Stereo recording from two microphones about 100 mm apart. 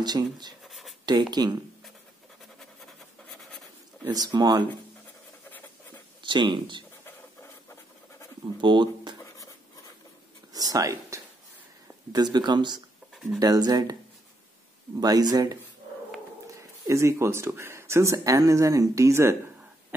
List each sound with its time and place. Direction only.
0.0 s speech: 45° right (ahead or behind)
0.7 s writing: centre (ahead or behind)
1.0 s speech: 45° right (ahead or behind)
2.6 s scratch: 5° left (ahead or behind)
4.1 s speech: 45° right (ahead or behind)
6.2 s speech: 55° right (ahead or behind)
8.5 s speech: 50° right (ahead or behind)
9.2 s dog: 35° left (ahead or behind)
10.5 s speech: 40° right (ahead or behind)
12.1 s speech: 45° right (ahead or behind)
13.1 s a sound: centre (ahead or behind)
13.4 s speech: 40° right (ahead or behind)
15.0 s speech: 40° right (ahead or behind)